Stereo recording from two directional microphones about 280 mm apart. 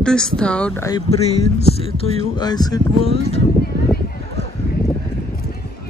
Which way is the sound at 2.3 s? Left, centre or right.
Centre.